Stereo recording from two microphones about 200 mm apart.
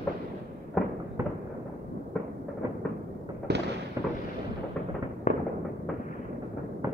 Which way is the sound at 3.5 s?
55° right (ahead or behind).